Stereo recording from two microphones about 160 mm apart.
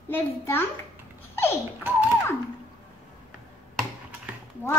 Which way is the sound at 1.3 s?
15° left (ahead or behind).